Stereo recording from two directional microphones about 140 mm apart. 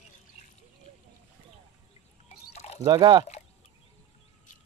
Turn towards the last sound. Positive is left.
turn(degrees=-30)  # may be behind; listen again after turning